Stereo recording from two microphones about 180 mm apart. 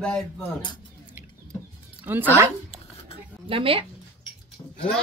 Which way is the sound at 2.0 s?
10° right (ahead or behind).